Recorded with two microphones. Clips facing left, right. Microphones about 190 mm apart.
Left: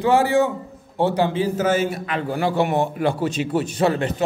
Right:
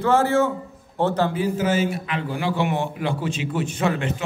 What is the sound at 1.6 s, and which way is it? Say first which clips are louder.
A man's voice: left 2 dB; 50° left (ahead or behind).